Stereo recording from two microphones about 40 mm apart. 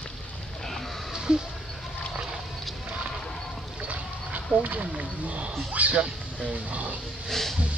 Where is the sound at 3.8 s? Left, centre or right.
Right.